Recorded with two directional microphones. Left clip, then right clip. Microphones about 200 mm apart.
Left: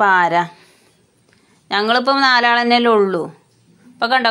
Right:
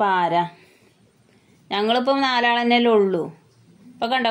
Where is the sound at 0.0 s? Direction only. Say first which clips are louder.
Left 6 dB; 5° left (ahead or behind).